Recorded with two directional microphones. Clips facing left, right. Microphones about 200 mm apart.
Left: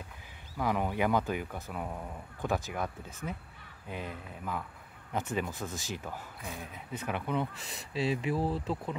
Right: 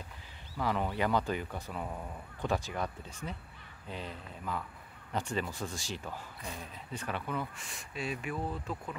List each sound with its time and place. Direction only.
0.6 s speech: 10° left (ahead or behind)
7.7 s speech: 30° left (ahead or behind)